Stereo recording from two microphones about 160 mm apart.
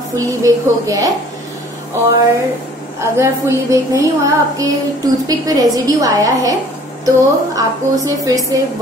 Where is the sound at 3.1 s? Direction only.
20° right (ahead or behind).